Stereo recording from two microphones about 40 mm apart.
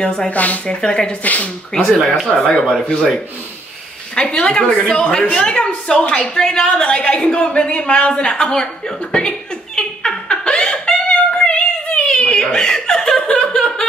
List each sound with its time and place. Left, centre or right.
0.0 s a woman's voice: left
0.3 s a woman's voice: left
0.7 s a woman's voice: left
1.2 s a woman's voice: left
2.0 s speech: centre
2.4 s speech: centre
2.8 s a woman's voice: left
4.1 s a woman's voice: left
9.8 s a sound: left